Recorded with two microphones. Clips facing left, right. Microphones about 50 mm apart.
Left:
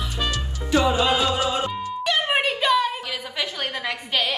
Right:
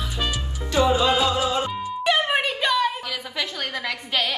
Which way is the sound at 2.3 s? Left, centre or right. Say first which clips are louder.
Left 2 dB; centre.